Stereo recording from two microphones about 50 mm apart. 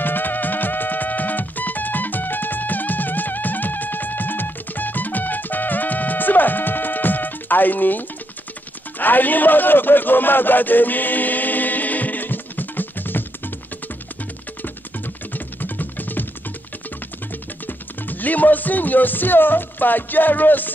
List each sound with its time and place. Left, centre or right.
0.0 s music: left
8.9 s a sound: left
15.3 s music: left
17.6 s speech: left